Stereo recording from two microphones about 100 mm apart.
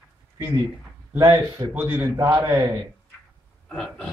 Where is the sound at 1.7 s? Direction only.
20° right (ahead or behind).